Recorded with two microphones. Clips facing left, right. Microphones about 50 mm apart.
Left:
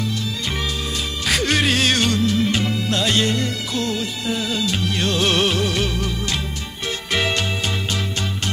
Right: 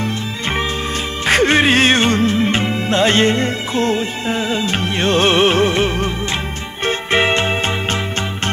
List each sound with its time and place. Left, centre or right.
1.2 s music: right